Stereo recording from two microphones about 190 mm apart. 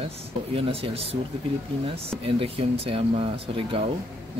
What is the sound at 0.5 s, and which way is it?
Speech, 30° right (ahead or behind).